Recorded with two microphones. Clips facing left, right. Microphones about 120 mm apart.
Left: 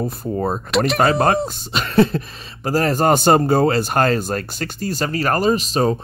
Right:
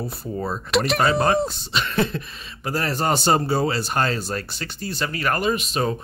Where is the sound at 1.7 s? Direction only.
40° left (ahead or behind).